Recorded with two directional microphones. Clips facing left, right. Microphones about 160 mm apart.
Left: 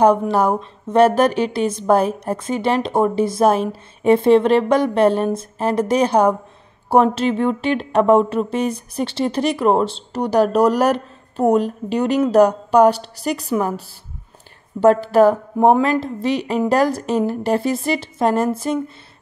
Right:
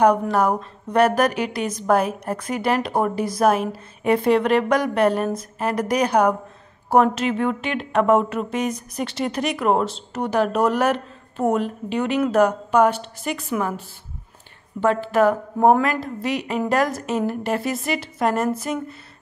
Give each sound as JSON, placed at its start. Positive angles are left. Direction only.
{"t": 0.0, "sound": "a woman's voice", "side_deg": 30}